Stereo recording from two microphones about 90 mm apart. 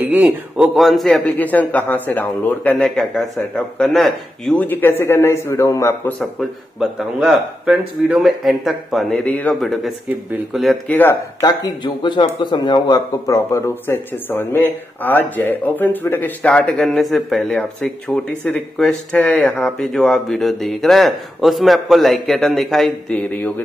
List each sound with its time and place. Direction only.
0.1 s speech: 20° right (ahead or behind)
0.7 s speech: centre (ahead or behind)
1.3 s speech: 20° left (ahead or behind)
2.8 s speech: 5° left (ahead or behind)
4.6 s a man's voice: 20° left (ahead or behind)
6.8 s speech: 5° right (ahead or behind)
9.2 s speech: 10° left (ahead or behind)
9.6 s speech: centre (ahead or behind)
10.9 s a man's voice: 20° left (ahead or behind)
11.4 s a man's voice: 60° left (ahead or behind)
13.5 s speech: 30° left (ahead or behind); by 19.7 s 15° left (ahead or behind)
19.8 s speech: 5° left (ahead or behind)